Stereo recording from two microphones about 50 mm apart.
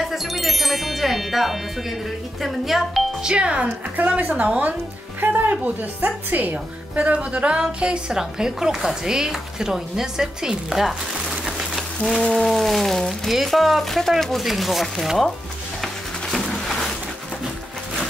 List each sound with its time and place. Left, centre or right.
0.0 s speech: centre
3.2 s music: centre
5.2 s a woman's voice: right
7.0 s music: right
7.6 s speech: centre
11.4 s a sound: centre
12.3 s speech: centre
15.8 s music: centre